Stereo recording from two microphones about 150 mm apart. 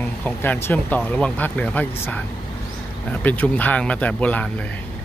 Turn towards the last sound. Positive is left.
turn(degrees=10)  # may be behind; listen again after turning